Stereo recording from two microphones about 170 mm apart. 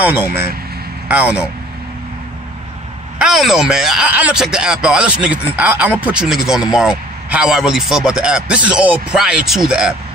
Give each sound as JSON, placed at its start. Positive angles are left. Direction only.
{"t": 0.0, "sound": "a man's voice", "side_deg": -10}
{"t": 3.2, "sound": "speech", "side_deg": 0}